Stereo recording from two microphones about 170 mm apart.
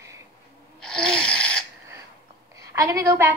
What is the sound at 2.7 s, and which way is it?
Speech, 20° right (ahead or behind).